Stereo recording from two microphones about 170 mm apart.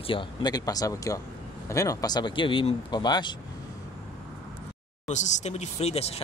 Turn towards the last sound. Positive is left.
turn(degrees=40)  # may be behind; listen again after turning